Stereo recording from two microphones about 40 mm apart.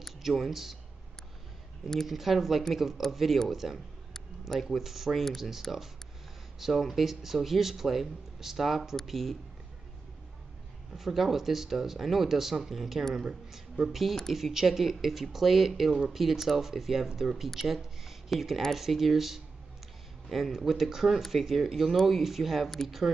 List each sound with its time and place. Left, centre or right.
0.2 s speech: centre
2.0 s speech: centre
11.0 s speech: centre